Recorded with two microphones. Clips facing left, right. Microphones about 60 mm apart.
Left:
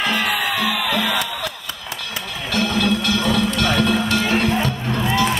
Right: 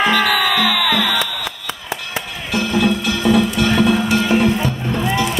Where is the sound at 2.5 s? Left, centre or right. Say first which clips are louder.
Right 2 dB; centre.